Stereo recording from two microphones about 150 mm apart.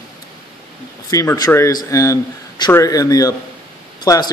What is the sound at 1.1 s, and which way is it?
Speech, 25° left (ahead or behind).